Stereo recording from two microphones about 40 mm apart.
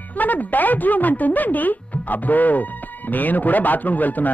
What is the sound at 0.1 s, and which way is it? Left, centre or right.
A woman's voice, left.